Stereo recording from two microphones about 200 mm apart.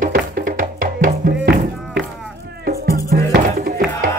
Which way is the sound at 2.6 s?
50° right (ahead or behind).